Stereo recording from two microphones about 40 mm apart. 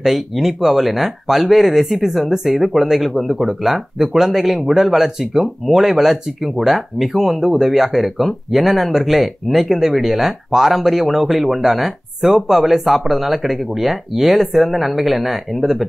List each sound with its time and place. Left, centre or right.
0.0 s speech: centre